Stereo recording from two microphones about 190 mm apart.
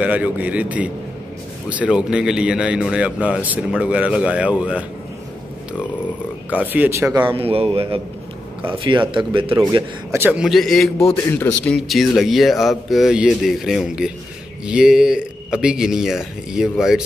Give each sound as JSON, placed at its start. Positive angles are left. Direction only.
{"t": 0.0, "sound": "a man's voice", "side_deg": -5}
{"t": 6.5, "sound": "speech", "side_deg": -10}
{"t": 7.2, "sound": "a man's voice", "side_deg": -30}